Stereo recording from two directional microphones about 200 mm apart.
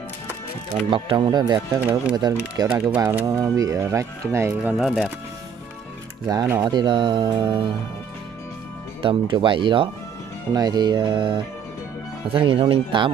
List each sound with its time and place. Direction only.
0.8 s speech: 25° right (ahead or behind)
4.7 s speech: centre (ahead or behind)
6.2 s speech: 20° right (ahead or behind)
9.0 s speech: 25° right (ahead or behind)